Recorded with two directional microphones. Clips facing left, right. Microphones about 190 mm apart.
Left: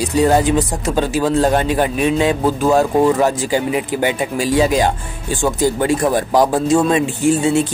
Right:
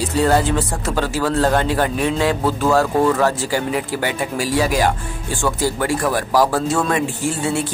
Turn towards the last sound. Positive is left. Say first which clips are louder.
# left 7 dB
turn(degrees=20)  # may be behind; listen again after turning